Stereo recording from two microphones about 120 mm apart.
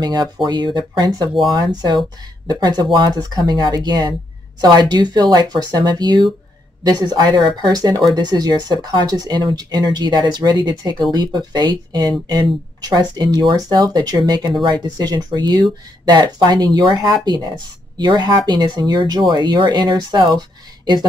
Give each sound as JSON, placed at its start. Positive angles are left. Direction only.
{"t": 0.0, "sound": "speech", "side_deg": -35}